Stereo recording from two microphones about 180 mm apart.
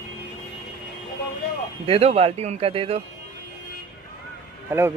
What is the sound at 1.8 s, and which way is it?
Speech, 35° right (ahead or behind).